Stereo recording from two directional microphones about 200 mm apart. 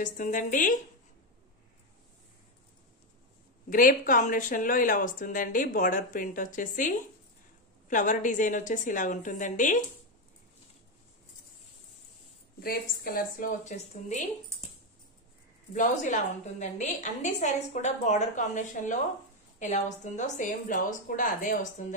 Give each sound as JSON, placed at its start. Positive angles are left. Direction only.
{"t": 0.0, "sound": "a woman's voice", "side_deg": 40}
{"t": 3.7, "sound": "a woman's voice", "side_deg": 40}
{"t": 12.6, "sound": "a woman's voice", "side_deg": 50}
{"t": 15.7, "sound": "a woman's voice", "side_deg": 40}